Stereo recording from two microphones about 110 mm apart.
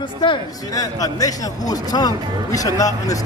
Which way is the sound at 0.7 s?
35° left (ahead or behind).